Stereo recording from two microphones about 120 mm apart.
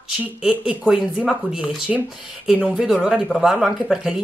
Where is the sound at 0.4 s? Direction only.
5° right (ahead or behind).